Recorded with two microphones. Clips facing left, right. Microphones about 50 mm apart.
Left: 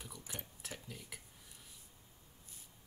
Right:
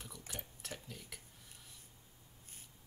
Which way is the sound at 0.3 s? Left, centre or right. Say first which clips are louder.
Right 1 dB; centre.